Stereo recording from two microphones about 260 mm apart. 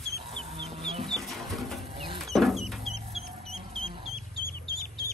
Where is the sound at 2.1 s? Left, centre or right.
Centre.